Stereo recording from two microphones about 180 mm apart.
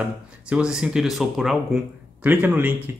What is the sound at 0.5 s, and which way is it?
Speech, 5° right (ahead or behind).